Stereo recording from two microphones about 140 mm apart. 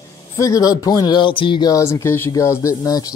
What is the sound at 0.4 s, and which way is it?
Speech, 25° left (ahead or behind).